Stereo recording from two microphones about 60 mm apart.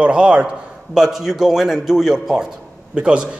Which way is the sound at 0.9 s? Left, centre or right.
Centre.